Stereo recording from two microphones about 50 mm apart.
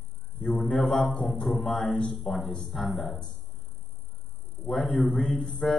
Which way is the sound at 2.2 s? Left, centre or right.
Centre.